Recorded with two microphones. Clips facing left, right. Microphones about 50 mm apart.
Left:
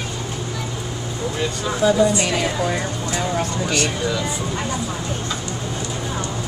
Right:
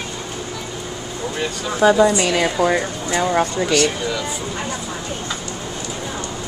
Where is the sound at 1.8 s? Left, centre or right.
Right.